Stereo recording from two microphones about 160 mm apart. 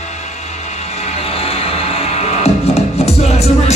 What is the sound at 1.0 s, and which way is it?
Music, 35° left (ahead or behind).